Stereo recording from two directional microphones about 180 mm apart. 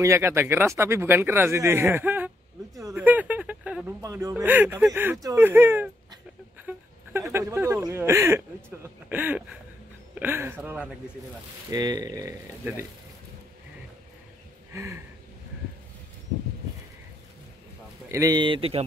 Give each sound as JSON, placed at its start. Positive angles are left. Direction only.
{"t": 0.0, "sound": "speech", "side_deg": -15}
{"t": 4.0, "sound": "speech", "side_deg": -20}
{"t": 11.7, "sound": "speech", "side_deg": -20}
{"t": 14.7, "sound": "a sound", "side_deg": -15}
{"t": 18.0, "sound": "speech", "side_deg": -20}